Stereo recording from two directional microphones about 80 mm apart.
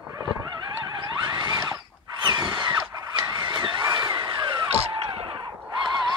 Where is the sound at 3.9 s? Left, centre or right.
Right.